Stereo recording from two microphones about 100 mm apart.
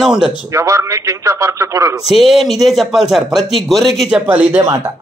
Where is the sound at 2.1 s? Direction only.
Centre (ahead or behind).